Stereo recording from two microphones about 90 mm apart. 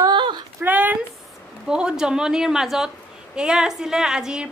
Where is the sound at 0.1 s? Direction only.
60° right (ahead or behind).